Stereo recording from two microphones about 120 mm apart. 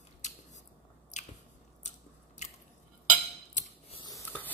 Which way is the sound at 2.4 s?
75° left (ahead or behind).